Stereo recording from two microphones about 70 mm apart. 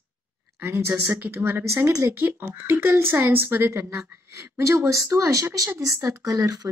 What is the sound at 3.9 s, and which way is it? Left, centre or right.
Speech, right.